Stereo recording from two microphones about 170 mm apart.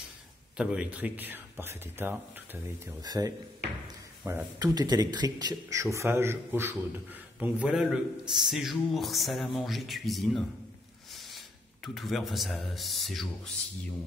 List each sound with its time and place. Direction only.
0.6 s a man's voice: 5° right (ahead or behind)
4.2 s speech: 10° right (ahead or behind)
4.6 s a man's voice: 25° right (ahead or behind); by 13.5 s centre (ahead or behind)